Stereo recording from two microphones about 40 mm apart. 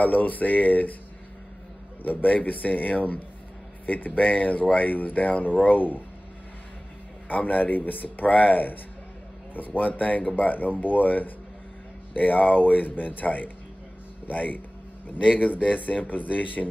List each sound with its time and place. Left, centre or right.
0.0 s speech: left
2.0 s speech: left
7.2 s speech: left